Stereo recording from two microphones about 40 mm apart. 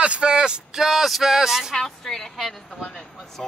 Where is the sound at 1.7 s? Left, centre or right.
Centre.